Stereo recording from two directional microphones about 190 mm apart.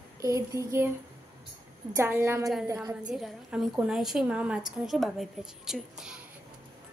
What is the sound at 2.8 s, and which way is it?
A woman's voice, 5° right (ahead or behind).